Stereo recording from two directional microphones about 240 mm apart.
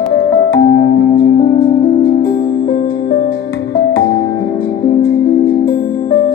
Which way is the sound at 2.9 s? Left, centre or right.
Left.